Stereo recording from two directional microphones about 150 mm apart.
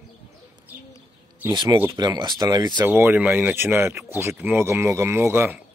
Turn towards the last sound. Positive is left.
turn(degrees=-15)  # may be behind; listen again after turning